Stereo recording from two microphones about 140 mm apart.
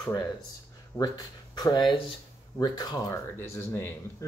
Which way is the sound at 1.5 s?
30° left (ahead or behind).